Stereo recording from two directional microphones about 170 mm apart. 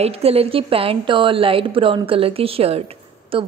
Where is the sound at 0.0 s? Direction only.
35° right (ahead or behind).